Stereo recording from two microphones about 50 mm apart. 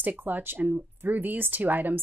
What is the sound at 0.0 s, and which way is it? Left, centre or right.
Speech, right.